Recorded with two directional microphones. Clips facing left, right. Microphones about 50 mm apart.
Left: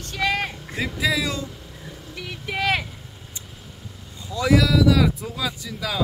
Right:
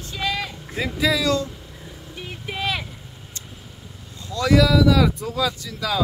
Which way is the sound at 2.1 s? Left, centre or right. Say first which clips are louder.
Left 2 dB; left.